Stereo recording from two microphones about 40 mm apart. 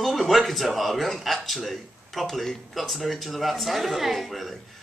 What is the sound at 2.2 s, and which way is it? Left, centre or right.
Speech, centre.